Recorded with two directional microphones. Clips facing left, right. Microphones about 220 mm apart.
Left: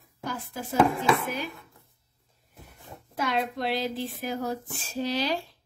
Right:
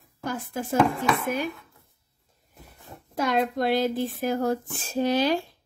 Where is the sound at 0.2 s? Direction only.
50° right (ahead or behind).